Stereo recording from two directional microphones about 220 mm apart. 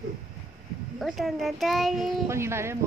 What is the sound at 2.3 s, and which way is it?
Speech, 10° right (ahead or behind).